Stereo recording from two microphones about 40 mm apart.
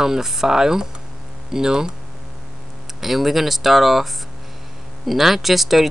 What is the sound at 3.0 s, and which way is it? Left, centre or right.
Speech, centre.